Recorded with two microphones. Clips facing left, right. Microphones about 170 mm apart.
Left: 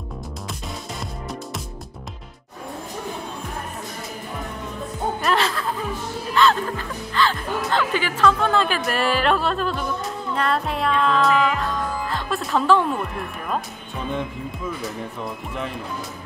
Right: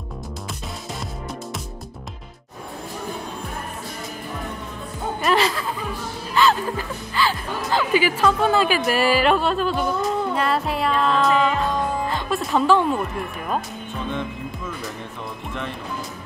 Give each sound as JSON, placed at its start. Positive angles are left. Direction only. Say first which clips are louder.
{"t": 5.2, "sound": "music", "louder": "right 3 dB", "side_deg": -5}
{"t": 7.2, "sound": "a woman's voice", "louder": "left 1 dB", "side_deg": -10}
{"t": 10.3, "sound": "music", "louder": "right 1 dB", "side_deg": -5}
{"t": 12.1, "sound": "speech", "louder": "right 1 dB", "side_deg": 0}